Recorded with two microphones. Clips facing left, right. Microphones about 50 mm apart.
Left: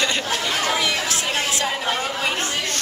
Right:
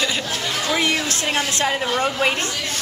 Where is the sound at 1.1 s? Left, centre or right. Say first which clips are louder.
Right 1 dB; right.